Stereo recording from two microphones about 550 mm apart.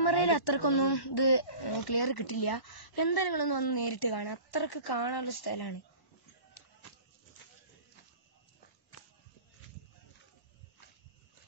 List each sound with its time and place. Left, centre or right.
0.0 s speech: left